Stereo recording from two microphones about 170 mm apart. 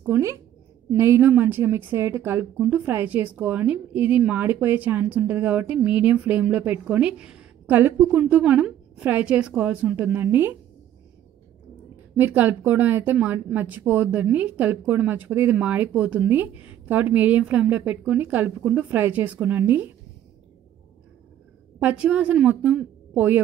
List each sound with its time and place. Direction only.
0.0 s a woman's voice: 15° right (ahead or behind)
12.2 s a woman's voice: 10° right (ahead or behind)
21.8 s a woman's voice: 5° right (ahead or behind)